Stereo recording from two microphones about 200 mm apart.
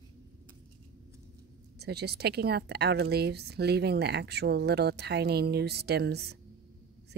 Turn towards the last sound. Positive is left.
turn(degrees=-55)  # may be behind; listen again after turning